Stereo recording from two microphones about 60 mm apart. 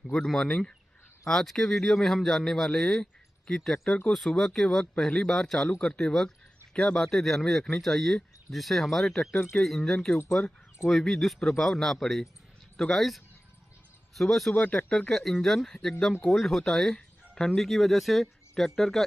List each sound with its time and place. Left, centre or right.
0.0 s speech: centre
9.3 s speech: left
9.7 s speech: centre
10.4 s speech: left
10.9 s speech: centre
14.5 s speech: left
14.9 s speech: centre
15.1 s speech: centre